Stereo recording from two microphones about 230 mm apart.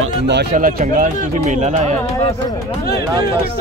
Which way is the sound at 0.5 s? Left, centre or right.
Right.